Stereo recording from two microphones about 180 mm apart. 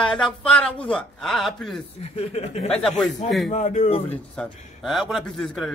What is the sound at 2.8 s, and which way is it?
Speech, centre (ahead or behind).